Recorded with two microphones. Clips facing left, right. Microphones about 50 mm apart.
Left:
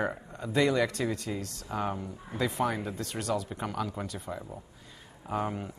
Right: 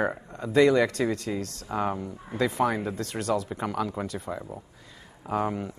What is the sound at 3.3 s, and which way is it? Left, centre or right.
Speech, right.